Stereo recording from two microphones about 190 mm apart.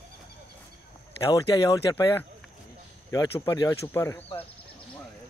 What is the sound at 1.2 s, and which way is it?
Speech, 15° left (ahead or behind).